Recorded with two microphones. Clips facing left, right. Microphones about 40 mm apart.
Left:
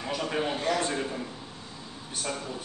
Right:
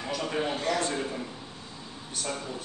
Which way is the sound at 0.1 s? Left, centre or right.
Centre.